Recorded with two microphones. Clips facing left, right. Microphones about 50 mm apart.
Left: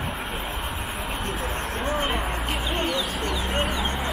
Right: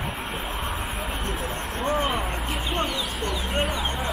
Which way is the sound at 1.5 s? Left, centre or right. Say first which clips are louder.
Left 2 dB; left.